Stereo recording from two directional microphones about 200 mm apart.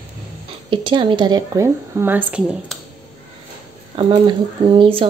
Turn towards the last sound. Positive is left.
turn(degrees=-25)  # may be behind; listen again after turning